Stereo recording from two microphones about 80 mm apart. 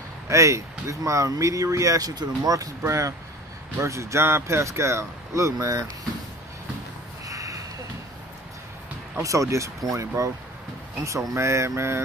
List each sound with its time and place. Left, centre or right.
0.3 s speech: right
7.2 s a sound: right
9.2 s speech: right